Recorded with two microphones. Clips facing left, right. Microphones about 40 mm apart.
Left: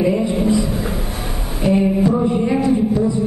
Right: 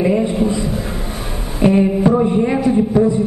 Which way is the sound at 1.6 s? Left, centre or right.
Right.